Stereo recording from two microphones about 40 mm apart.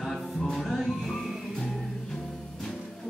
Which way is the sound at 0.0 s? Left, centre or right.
Centre.